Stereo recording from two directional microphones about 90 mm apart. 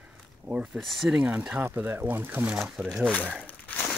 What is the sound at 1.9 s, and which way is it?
Speech, 25° right (ahead or behind).